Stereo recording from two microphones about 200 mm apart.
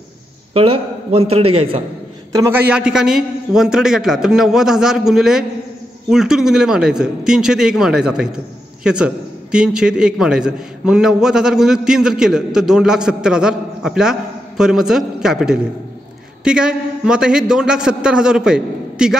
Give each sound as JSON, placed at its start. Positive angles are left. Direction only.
{"t": 0.6, "sound": "a man's voice", "side_deg": -30}
{"t": 2.3, "sound": "a man's voice", "side_deg": -15}
{"t": 2.7, "sound": "a man's voice", "side_deg": -5}